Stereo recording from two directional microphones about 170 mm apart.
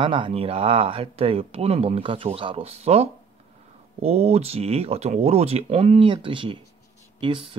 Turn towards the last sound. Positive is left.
turn(degrees=-30)  # may be behind; listen again after turning